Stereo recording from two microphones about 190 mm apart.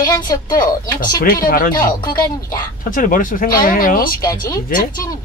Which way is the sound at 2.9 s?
45° left (ahead or behind).